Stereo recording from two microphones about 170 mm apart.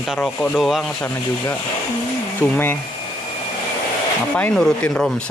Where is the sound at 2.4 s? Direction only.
10° left (ahead or behind).